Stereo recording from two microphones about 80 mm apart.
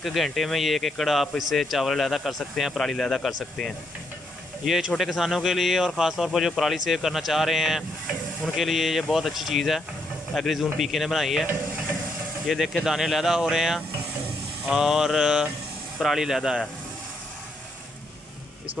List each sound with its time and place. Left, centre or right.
0.0 s speech: centre
4.6 s speech: centre
12.4 s speech: centre
14.7 s mantra: centre
16.0 s speech: centre